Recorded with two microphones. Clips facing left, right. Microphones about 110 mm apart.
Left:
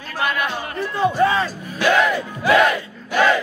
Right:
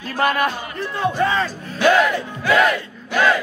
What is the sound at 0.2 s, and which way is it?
Speech, 45° right (ahead or behind).